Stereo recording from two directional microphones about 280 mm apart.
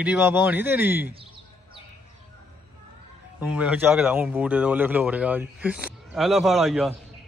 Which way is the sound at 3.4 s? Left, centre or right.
Centre.